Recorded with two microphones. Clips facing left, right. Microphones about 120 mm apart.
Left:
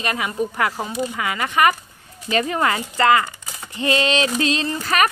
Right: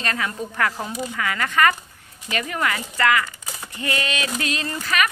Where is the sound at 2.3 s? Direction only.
30° left (ahead or behind).